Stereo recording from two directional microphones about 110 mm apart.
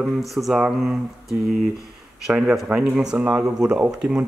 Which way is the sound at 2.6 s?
10° right (ahead or behind).